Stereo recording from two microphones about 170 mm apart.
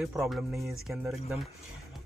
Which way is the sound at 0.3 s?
Centre (ahead or behind).